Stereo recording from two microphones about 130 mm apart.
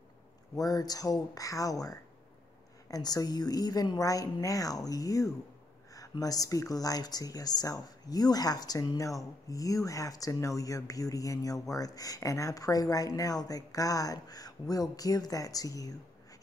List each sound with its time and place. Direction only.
0.6 s speech: 30° left (ahead or behind)